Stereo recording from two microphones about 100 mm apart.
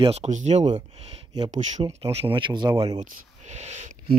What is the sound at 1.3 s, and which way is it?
Speech, 45° right (ahead or behind).